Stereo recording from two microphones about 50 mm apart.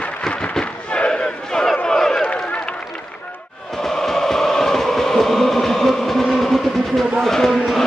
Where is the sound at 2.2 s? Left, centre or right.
Left.